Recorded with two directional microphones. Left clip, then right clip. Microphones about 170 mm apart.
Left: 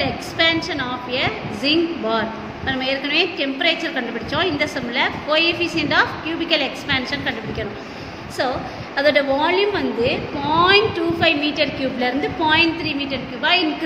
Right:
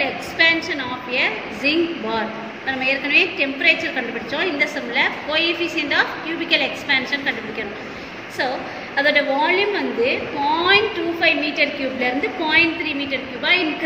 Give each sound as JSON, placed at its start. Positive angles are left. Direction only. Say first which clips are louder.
{"t": 0.0, "sound": "a woman's voice", "louder": "right 1 dB", "side_deg": 55}
{"t": 8.9, "sound": "a woman's voice", "louder": "left 1 dB", "side_deg": 60}